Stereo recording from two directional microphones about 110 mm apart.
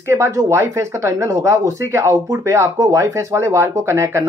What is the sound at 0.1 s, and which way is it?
Speech, 25° right (ahead or behind).